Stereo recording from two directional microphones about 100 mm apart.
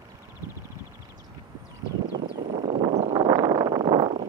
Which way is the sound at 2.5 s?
70° right (ahead or behind).